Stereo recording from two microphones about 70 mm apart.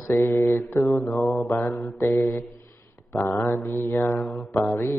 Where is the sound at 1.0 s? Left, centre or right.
Left.